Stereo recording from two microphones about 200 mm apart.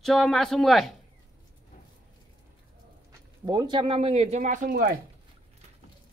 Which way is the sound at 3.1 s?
20° right (ahead or behind).